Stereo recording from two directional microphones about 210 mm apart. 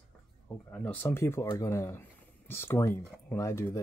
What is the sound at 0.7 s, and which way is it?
Speech, 5° left (ahead or behind).